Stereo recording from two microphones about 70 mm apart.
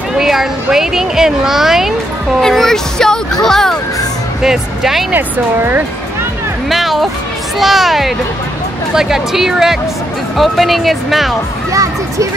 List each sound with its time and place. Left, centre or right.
0.2 s speech: centre
4.4 s speech: centre
5.1 s speech: right
6.7 s speech: centre
11.7 s speech: right